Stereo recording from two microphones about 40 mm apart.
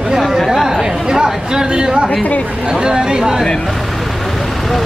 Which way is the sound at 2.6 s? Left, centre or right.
Centre.